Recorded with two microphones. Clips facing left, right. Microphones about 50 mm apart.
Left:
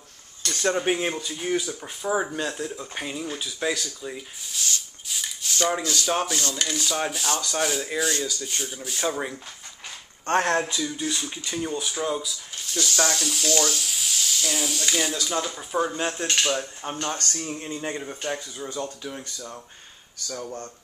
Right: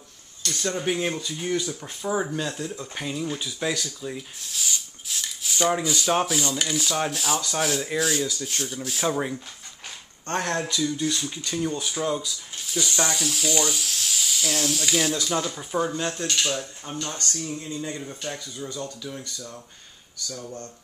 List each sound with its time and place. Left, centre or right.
0.4 s speech: left
1.0 s speech: centre
5.5 s speech: centre
10.2 s speech: left
10.6 s speech: centre
12.7 s speech: centre
13.8 s hiss: centre
15.2 s speech: centre
16.3 s speech: left
18.0 s speech: left